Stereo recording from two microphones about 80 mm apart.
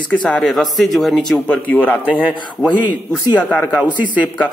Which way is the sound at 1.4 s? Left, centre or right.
Centre.